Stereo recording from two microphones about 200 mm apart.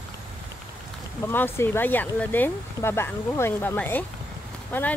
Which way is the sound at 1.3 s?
10° left (ahead or behind).